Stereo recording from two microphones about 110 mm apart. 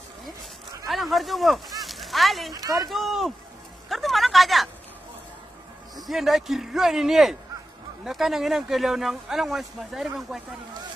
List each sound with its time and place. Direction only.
0.8 s speech: centre (ahead or behind)
2.5 s speech: 35° right (ahead or behind)
2.9 s speech: centre (ahead or behind)
3.9 s a sound: centre (ahead or behind)
5.9 s speech: centre (ahead or behind)